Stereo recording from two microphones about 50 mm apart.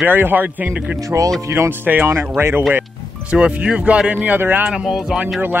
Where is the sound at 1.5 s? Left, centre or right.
Right.